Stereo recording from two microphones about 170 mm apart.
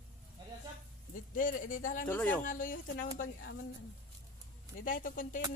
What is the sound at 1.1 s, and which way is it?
Speech, 55° left (ahead or behind).